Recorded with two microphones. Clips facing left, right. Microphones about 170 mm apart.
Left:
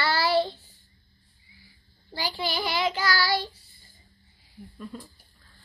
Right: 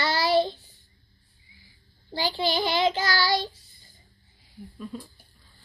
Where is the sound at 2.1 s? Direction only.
25° right (ahead or behind).